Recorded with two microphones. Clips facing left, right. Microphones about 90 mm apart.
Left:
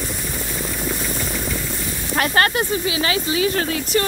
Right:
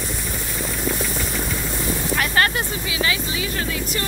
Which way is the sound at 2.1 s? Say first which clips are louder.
Left 3 dB; 40° left (ahead or behind).